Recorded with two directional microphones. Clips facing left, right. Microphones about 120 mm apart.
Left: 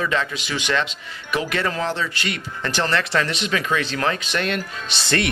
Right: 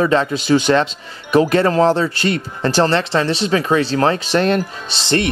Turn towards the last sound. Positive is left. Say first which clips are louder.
# right 4 dB
turn(degrees=-25)  # may be behind; listen again after turning